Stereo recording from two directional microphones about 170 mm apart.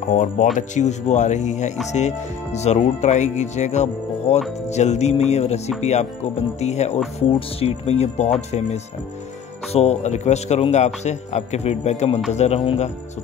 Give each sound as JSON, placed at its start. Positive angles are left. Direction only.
{"t": 0.1, "sound": "speech", "side_deg": 45}